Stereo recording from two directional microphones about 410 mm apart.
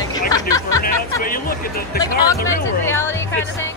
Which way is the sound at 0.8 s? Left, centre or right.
Left.